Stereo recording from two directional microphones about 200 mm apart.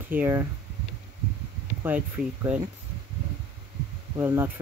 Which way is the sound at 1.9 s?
10° right (ahead or behind).